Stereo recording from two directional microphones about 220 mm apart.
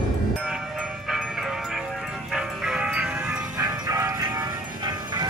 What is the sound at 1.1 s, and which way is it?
Music, centre (ahead or behind).